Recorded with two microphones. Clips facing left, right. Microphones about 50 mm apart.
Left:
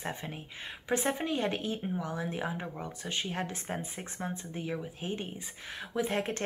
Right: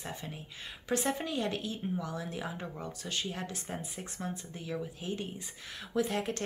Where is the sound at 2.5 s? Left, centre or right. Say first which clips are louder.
Left 2 dB; centre.